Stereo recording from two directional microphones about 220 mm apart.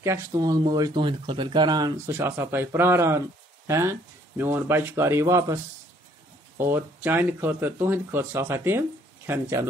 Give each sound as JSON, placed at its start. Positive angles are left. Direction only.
{"t": 0.0, "sound": "speech", "side_deg": -15}
{"t": 6.6, "sound": "speech", "side_deg": -10}